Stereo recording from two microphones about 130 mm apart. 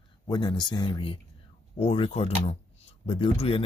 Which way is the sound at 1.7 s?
45° left (ahead or behind).